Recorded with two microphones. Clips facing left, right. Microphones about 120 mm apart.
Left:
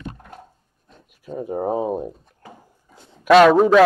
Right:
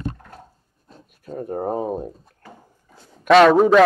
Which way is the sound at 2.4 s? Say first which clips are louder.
Left 1 dB; 10° left (ahead or behind).